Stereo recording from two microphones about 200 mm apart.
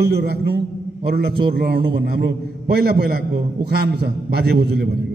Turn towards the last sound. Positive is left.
turn(degrees=-55)  # may be behind; listen again after turning